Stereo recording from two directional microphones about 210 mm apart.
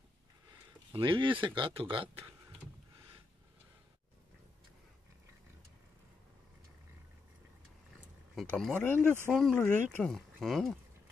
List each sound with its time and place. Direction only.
0.5 s speech: 25° right (ahead or behind)
8.4 s speech: centre (ahead or behind)